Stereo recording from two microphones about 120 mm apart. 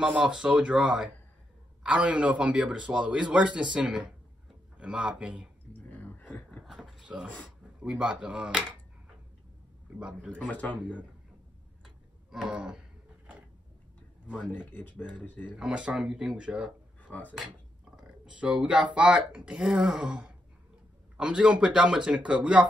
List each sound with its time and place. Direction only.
0.0 s speech: 10° right (ahead or behind)
5.7 s a sound: 15° left (ahead or behind)
6.6 s a sound: centre (ahead or behind)
7.2 s speech: 10° left (ahead or behind)
7.8 s speech: 5° right (ahead or behind)
9.9 s speech: 10° right (ahead or behind)
10.4 s speech: 10° left (ahead or behind)
11.8 s tick-tock: 5° right (ahead or behind)
14.4 s speech: 10° left (ahead or behind)
15.5 s speech: 10° right (ahead or behind)
17.1 s speech: 15° left (ahead or behind)
17.9 s a sound: 10° right (ahead or behind)
18.9 s speech: 10° right (ahead or behind)